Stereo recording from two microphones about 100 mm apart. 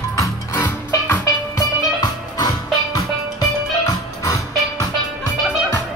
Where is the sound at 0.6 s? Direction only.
20° left (ahead or behind).